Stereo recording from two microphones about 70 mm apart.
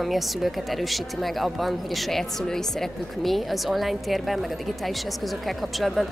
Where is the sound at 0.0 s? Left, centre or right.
Centre.